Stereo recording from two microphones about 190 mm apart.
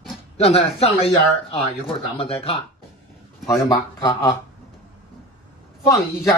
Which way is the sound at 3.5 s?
20° left (ahead or behind).